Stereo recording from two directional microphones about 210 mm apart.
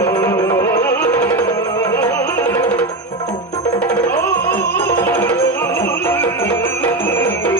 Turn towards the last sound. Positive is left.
turn(degrees=10)  # may be behind; listen again after turning